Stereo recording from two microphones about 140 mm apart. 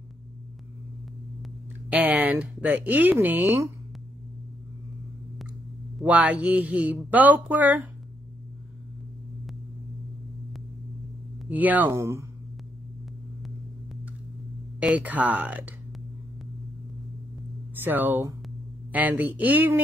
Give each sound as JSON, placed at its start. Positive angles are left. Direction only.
{"t": 1.9, "sound": "speech", "side_deg": -10}
{"t": 6.0, "sound": "speech", "side_deg": -10}
{"t": 11.4, "sound": "speech", "side_deg": -10}
{"t": 14.8, "sound": "speech", "side_deg": -10}
{"t": 17.7, "sound": "speech", "side_deg": -15}